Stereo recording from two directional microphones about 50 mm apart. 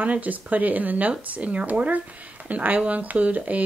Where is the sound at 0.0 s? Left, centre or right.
Right.